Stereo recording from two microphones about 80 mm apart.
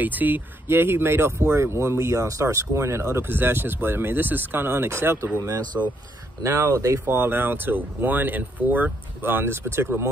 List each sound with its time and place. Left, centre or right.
0.0 s speech: right